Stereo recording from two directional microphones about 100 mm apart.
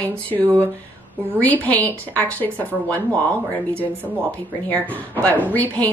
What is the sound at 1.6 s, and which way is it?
Speech, 15° left (ahead or behind).